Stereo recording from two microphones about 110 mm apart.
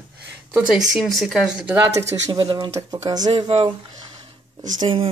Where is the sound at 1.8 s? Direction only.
30° right (ahead or behind).